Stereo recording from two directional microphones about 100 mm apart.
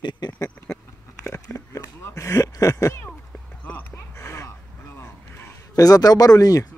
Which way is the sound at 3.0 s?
15° left (ahead or behind).